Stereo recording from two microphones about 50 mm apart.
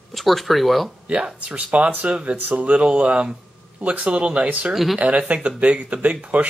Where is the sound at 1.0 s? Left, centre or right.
Right.